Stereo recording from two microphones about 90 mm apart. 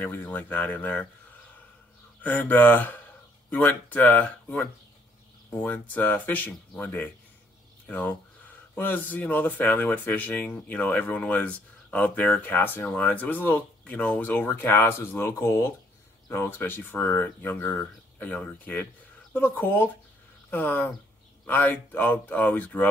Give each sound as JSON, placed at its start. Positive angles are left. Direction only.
{"t": 0.0, "sound": "speech", "side_deg": 20}
{"t": 2.2, "sound": "speech", "side_deg": 20}